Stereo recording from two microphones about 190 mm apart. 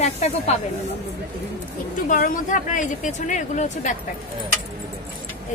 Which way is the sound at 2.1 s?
45° left (ahead or behind).